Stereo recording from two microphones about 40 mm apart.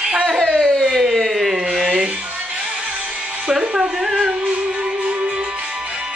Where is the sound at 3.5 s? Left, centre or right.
Centre.